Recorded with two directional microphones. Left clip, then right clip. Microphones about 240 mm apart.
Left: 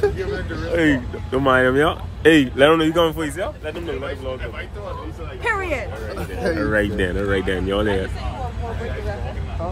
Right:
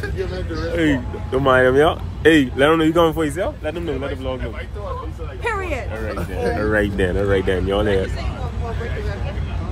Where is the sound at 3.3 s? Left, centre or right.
Right.